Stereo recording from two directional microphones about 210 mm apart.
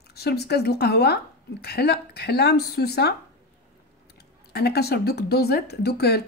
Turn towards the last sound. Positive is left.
turn(degrees=50)  # may be behind; listen again after turning